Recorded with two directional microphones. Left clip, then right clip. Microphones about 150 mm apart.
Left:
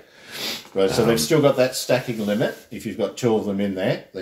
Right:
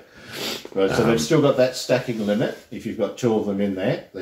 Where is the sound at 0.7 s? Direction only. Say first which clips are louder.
Left 1 dB; 35° left (ahead or behind).